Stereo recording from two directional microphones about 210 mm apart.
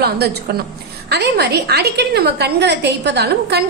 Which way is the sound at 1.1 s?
50° right (ahead or behind).